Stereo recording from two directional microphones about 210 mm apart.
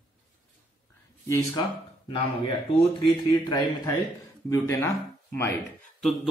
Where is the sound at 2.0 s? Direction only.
25° left (ahead or behind).